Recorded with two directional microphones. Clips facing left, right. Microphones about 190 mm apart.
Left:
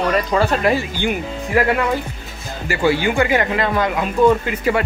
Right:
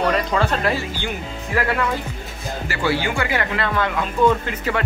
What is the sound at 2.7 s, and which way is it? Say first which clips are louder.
Speech: left 5 dB; 15° left (ahead or behind).